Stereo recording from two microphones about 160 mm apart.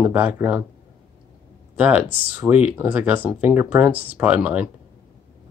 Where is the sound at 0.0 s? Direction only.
10° right (ahead or behind).